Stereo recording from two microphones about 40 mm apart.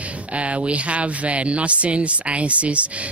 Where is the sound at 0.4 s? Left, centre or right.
Right.